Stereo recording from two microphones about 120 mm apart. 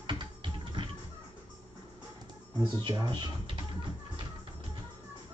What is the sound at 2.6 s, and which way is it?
Speech, 40° right (ahead or behind).